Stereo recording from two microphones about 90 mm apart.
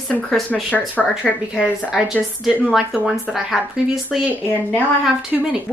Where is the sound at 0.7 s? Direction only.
15° left (ahead or behind).